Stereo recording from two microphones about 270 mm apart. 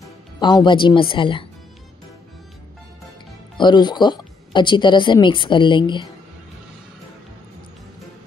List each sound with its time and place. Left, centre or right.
0.4 s speech: centre
3.5 s speech: centre